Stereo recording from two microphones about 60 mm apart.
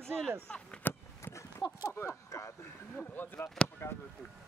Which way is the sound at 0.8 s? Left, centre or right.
Left.